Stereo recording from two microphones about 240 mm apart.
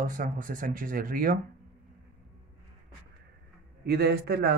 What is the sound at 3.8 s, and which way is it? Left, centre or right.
Speech, right.